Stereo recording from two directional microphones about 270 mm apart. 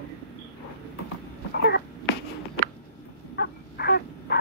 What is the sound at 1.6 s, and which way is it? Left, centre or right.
Cat, left.